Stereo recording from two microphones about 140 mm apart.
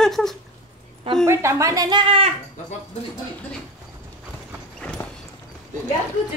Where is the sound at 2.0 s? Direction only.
40° right (ahead or behind).